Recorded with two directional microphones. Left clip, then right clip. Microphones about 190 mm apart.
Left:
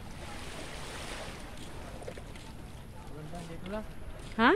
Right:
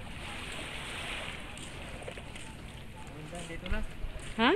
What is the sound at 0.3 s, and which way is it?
Boat, 25° left (ahead or behind).